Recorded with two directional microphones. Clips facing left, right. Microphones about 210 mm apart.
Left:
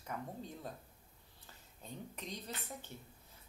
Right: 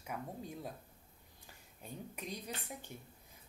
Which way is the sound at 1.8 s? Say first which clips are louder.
Right 1 dB; 10° right (ahead or behind).